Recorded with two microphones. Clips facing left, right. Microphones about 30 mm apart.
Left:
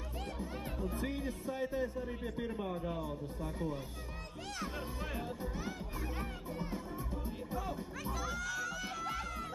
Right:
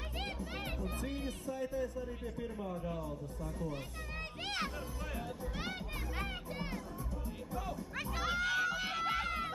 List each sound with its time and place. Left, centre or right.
1.5 s a man's voice: left
5.6 s a child's voice: right
8.0 s speech: right